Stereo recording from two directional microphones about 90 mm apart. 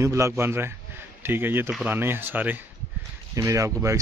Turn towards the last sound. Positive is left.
turn(degrees=-35)  # may be behind; listen again after turning